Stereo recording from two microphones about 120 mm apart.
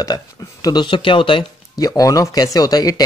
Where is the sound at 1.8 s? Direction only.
30° left (ahead or behind).